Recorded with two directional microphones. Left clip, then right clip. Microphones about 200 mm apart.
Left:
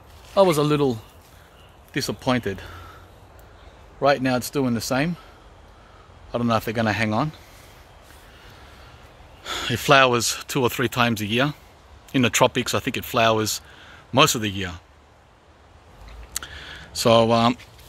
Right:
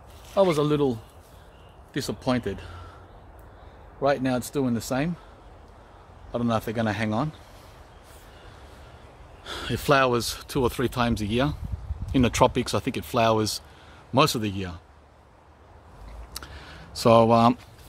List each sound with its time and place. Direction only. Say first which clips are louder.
0.3 s speech: left 4 dB; 45° left (ahead or behind)
4.0 s speech: left 4 dB; 35° left (ahead or behind)
6.3 s speech: left 4 dB; 35° left (ahead or behind)
9.4 s speech: left 6 dB; 25° left (ahead or behind); by 14.8 s 5° left (ahead or behind)
16.3 s a sound: left 7 dB; 5° right (ahead or behind)